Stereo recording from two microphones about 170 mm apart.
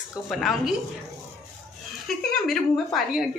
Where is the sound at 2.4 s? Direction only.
Centre (ahead or behind).